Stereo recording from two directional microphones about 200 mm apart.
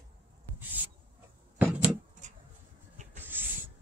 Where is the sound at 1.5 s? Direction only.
5° right (ahead or behind).